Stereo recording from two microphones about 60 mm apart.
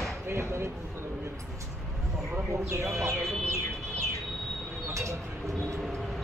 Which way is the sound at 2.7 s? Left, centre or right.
Right.